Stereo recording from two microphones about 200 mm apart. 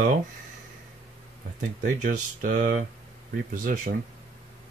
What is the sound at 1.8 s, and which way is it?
Speech, 40° right (ahead or behind).